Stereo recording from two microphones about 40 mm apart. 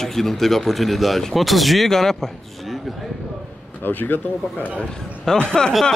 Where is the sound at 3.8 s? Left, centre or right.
Left.